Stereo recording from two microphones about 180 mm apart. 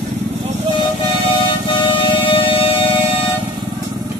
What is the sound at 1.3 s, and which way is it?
Music, 25° left (ahead or behind).